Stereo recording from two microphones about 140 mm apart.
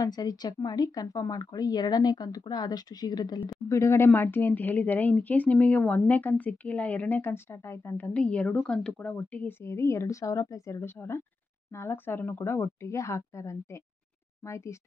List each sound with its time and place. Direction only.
0.0 s speech: 30° left (ahead or behind)